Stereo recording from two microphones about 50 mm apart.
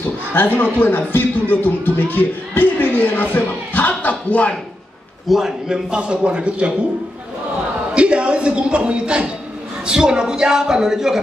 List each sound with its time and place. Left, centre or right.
0.3 s speech: left
5.3 s speech: centre
5.9 s a man's voice: centre
7.9 s a man's voice: right